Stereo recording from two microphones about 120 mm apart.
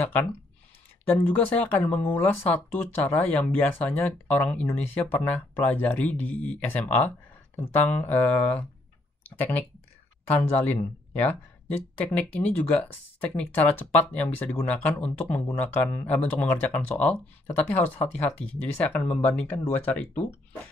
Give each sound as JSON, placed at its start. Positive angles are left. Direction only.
{"t": 0.0, "sound": "speech", "side_deg": 15}